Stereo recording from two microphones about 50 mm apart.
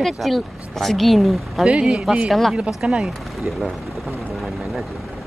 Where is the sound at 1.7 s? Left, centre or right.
Right.